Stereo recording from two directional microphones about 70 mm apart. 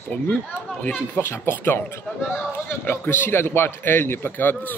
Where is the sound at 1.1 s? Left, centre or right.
Left.